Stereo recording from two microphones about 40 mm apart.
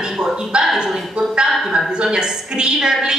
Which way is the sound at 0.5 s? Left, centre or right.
Right.